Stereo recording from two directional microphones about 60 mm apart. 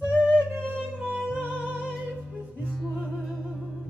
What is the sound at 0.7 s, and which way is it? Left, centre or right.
Music, right.